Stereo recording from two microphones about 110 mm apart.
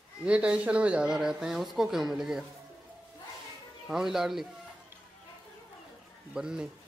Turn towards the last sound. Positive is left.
turn(degrees=-5)  # may be behind; listen again after turning